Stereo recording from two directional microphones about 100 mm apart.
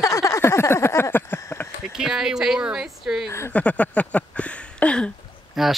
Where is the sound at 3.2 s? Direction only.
25° left (ahead or behind).